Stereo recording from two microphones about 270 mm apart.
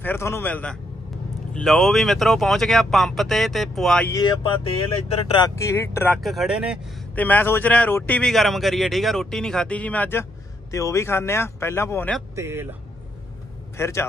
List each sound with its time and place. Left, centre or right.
0.0 s speech: centre
5.6 s speech: centre
12.4 s a man's voice: centre
13.7 s speech: centre